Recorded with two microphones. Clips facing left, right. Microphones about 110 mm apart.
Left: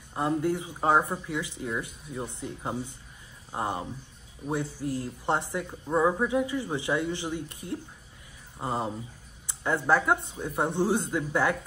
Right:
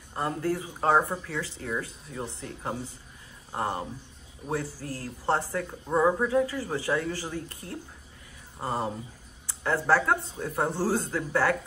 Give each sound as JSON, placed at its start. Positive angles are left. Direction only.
{"t": 0.1, "sound": "speech", "side_deg": 15}
{"t": 5.7, "sound": "speech", "side_deg": 0}
{"t": 6.2, "sound": "speech", "side_deg": 15}